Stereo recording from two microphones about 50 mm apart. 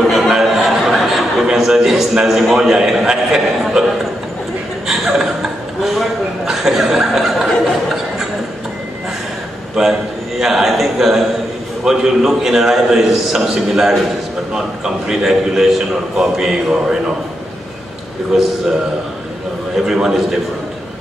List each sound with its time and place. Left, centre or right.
0.3 s a sound: centre
4.8 s chuckle: centre
5.9 s speech: centre
9.8 s a man's voice: centre
15.0 s a man's voice: centre
18.3 s a man's voice: centre
19.8 s a man's voice: centre